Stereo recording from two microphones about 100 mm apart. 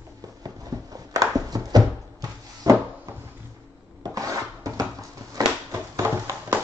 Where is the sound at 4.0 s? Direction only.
35° right (ahead or behind).